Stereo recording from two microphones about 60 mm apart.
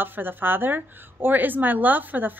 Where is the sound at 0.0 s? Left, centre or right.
Right.